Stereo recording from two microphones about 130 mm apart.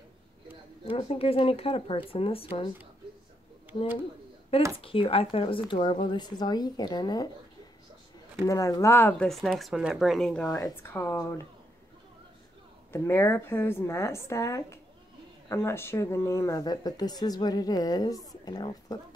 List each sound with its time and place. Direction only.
0.8 s speech: 45° left (ahead or behind)
4.5 s speech: 50° left (ahead or behind); by 7.2 s 30° left (ahead or behind)
8.5 s speech: 25° left (ahead or behind)
9.3 s speech: centre (ahead or behind)
10.8 s speech: 15° left (ahead or behind)
12.9 s speech: 20° left (ahead or behind)